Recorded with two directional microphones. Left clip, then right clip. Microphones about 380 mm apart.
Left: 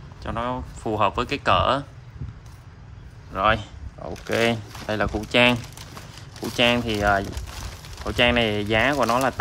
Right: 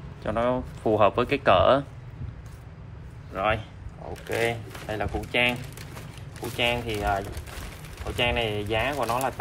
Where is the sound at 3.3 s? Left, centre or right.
Centre.